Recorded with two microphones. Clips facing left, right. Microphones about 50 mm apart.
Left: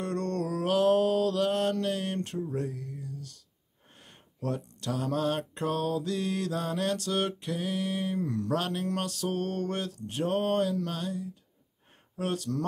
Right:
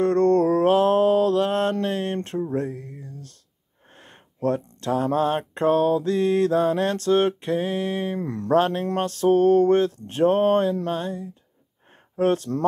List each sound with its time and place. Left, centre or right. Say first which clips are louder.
0.0 s mantra: right 13 dB; right
3.9 s speech: right 6 dB; right